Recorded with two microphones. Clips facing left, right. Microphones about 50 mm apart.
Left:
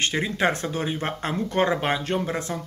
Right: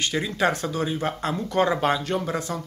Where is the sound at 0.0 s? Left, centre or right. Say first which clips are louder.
Even; left.